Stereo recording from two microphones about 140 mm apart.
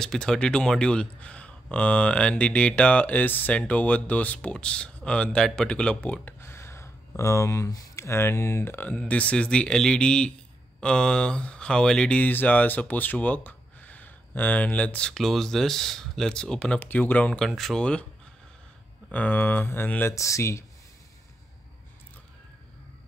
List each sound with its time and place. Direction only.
0.0 s speech: 5° left (ahead or behind)
19.1 s speech: 15° left (ahead or behind)